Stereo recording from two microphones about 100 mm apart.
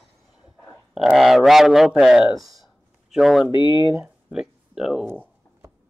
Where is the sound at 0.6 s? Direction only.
Centre (ahead or behind).